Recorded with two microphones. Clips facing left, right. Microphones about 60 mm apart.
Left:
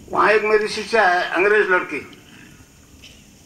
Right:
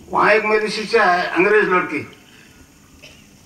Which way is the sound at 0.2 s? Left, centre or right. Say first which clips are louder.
Even; right.